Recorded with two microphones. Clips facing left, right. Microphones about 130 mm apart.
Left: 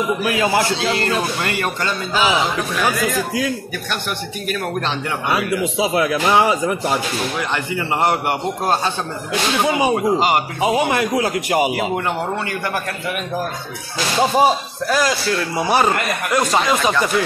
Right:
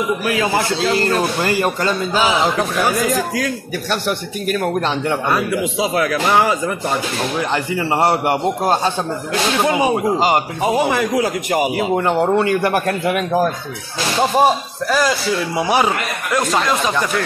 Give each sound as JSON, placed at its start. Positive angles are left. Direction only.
{"t": 1.4, "sound": "a man's voice", "side_deg": -30}
{"t": 6.2, "sound": "speech", "side_deg": 10}
{"t": 7.5, "sound": "a man's voice", "side_deg": -30}
{"t": 9.6, "sound": "a man's voice", "side_deg": 0}
{"t": 11.9, "sound": "a man's voice", "side_deg": -30}
{"t": 13.0, "sound": "speech", "side_deg": -90}
{"t": 14.3, "sound": "a man's voice", "side_deg": 0}
{"t": 16.3, "sound": "a man's voice", "side_deg": 5}